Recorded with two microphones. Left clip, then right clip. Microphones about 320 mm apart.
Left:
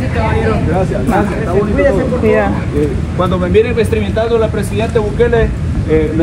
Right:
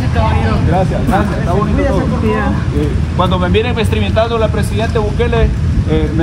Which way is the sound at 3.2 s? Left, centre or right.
Centre.